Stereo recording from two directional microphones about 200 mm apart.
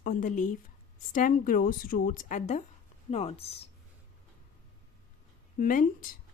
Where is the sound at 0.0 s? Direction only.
40° left (ahead or behind).